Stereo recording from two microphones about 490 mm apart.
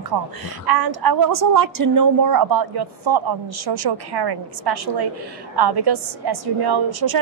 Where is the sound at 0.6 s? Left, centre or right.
Right.